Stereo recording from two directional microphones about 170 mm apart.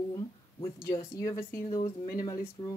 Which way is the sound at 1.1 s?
20° left (ahead or behind).